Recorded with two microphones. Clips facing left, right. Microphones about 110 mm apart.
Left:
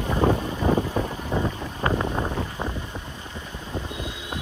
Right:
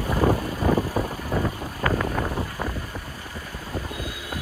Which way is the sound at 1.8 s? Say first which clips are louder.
Even; 25° left (ahead or behind).